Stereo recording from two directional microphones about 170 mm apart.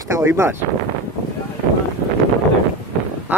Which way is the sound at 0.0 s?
20° right (ahead or behind).